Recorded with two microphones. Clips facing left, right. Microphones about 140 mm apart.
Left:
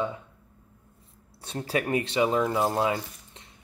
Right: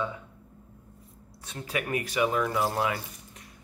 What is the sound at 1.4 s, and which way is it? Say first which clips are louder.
Speech: left 5 dB; 30° left (ahead or behind).